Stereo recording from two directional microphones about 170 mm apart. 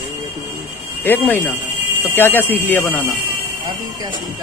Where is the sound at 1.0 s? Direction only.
10° left (ahead or behind).